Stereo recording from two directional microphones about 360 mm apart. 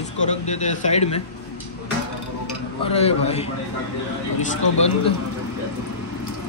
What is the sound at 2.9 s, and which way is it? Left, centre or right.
Speech, centre.